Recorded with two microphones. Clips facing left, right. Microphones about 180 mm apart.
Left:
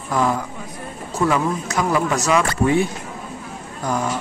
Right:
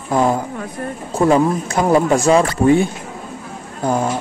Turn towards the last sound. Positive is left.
turn(degrees=-30)  # may be behind; listen again after turning